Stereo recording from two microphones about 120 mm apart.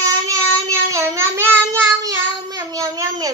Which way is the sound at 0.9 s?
25° right (ahead or behind).